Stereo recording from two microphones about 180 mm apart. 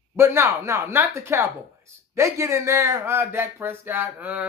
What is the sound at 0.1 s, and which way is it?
Speech, 15° right (ahead or behind).